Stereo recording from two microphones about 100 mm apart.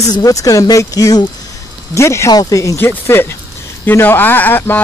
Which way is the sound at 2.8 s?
20° left (ahead or behind).